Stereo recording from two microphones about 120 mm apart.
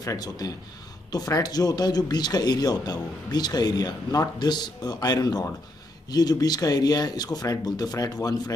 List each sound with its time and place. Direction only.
0.0 s speech: 30° left (ahead or behind)